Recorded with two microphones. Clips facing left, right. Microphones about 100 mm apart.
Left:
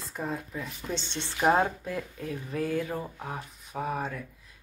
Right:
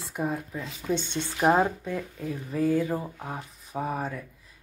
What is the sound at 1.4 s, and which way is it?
Speech, centre (ahead or behind).